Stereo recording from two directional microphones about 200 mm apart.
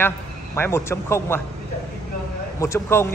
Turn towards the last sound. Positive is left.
turn(degrees=10)  # may be behind; listen again after turning